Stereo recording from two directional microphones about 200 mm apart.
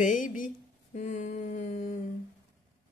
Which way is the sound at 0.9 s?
35° left (ahead or behind).